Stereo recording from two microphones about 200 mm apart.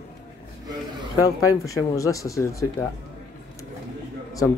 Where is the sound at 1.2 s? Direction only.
15° left (ahead or behind).